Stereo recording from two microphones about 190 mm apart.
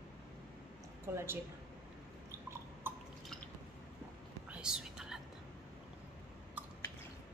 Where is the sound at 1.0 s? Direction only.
15° right (ahead or behind).